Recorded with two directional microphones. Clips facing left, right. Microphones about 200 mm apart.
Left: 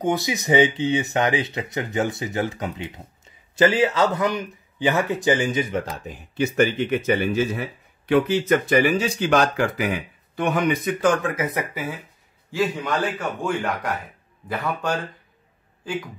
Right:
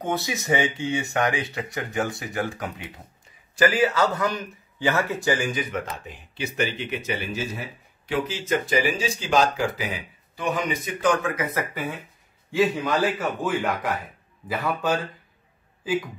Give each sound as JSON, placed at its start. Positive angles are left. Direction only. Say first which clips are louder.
{"t": 0.0, "sound": "a man's voice", "louder": "left 4 dB", "side_deg": 15}
{"t": 12.4, "sound": "a man's voice", "louder": "right 2 dB", "side_deg": 0}